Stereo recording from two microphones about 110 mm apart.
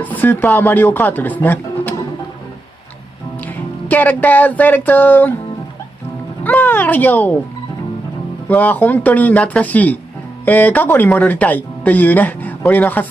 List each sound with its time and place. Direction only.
0.0 s speech: 15° left (ahead or behind)
3.3 s speech: 15° left (ahead or behind)
6.4 s speech: 15° left (ahead or behind)
8.5 s speech: 15° left (ahead or behind)